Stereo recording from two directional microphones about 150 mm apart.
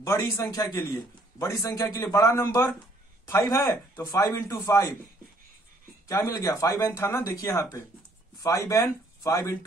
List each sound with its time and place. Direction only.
0.0 s a man's voice: 20° left (ahead or behind)
6.0 s a man's voice: 20° left (ahead or behind)